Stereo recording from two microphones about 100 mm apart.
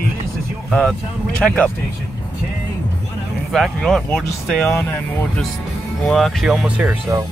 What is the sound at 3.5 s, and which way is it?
Speech, 5° left (ahead or behind).